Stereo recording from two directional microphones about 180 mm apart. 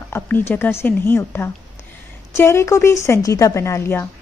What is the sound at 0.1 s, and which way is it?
Speech, 15° left (ahead or behind).